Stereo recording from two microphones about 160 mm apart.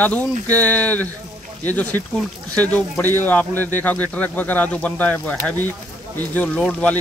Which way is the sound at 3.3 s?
10° left (ahead or behind).